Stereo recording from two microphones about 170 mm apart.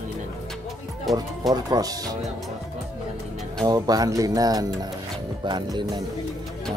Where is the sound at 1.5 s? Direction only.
20° right (ahead or behind).